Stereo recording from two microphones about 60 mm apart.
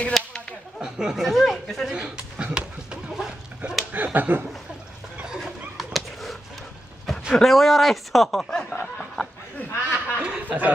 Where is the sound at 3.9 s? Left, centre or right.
Right.